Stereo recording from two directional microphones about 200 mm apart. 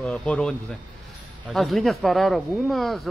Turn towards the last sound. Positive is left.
turn(degrees=0)  # may be behind; listen again after turning